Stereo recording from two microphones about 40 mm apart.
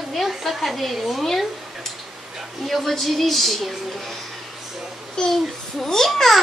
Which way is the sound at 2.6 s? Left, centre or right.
Centre.